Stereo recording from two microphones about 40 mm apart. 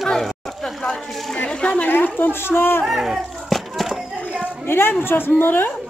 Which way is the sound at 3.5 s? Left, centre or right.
Centre.